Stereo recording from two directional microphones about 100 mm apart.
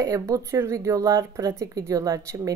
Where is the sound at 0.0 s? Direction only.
35° right (ahead or behind).